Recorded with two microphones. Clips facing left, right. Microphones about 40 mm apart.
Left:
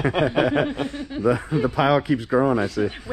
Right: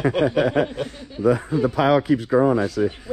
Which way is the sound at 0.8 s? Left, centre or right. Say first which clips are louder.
Left 2 dB; left.